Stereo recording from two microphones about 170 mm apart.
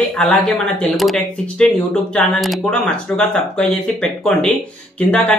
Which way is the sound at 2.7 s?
5° left (ahead or behind).